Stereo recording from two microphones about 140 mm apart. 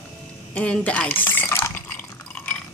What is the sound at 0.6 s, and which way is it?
Drip, 10° left (ahead or behind).